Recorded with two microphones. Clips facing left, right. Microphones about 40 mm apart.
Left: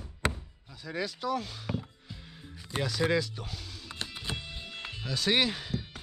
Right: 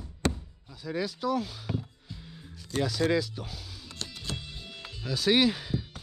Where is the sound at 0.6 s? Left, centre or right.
Centre.